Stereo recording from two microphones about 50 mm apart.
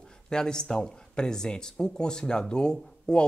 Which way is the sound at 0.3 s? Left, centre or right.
Centre.